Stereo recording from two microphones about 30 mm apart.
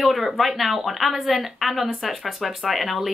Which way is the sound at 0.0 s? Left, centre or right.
Centre.